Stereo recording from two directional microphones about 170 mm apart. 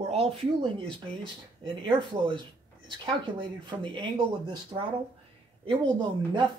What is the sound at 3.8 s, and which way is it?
Speech, 30° right (ahead or behind).